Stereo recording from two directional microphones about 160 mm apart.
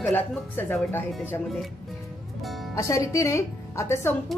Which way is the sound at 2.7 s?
20° left (ahead or behind).